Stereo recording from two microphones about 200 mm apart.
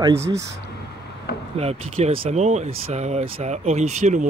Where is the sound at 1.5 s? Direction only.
30° right (ahead or behind).